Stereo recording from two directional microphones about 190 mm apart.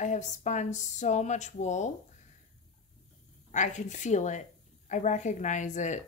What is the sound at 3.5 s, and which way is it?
A woman's voice, 40° left (ahead or behind).